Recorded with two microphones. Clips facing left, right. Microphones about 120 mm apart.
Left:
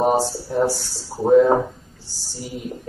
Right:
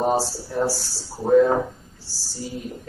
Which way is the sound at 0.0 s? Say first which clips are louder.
Left 3 dB; 15° left (ahead or behind).